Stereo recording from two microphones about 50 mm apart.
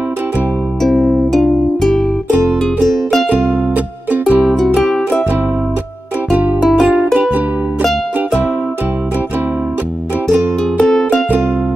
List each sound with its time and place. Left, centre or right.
0.8 s music: centre
1.3 s music: centre
3.3 s music: right
7.2 s music: right
10.8 s music: centre